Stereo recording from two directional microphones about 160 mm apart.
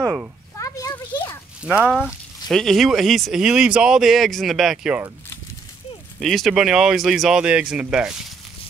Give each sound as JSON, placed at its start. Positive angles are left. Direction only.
{"t": 0.6, "sound": "a sound", "side_deg": 20}
{"t": 1.6, "sound": "speech", "side_deg": -5}
{"t": 6.1, "sound": "speech", "side_deg": 0}